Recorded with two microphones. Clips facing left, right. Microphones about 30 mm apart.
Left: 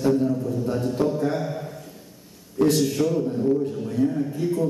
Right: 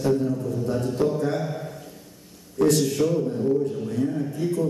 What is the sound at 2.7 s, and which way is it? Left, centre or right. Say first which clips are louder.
A man's voice: even; centre.